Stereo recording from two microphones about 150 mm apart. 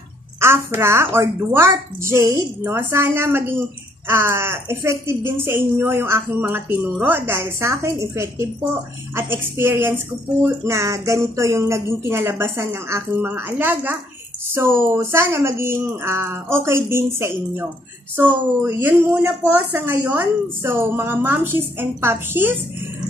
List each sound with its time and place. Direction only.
0.4 s speech: 15° right (ahead or behind)